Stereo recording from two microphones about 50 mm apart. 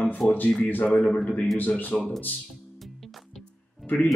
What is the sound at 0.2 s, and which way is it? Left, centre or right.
Speech, left.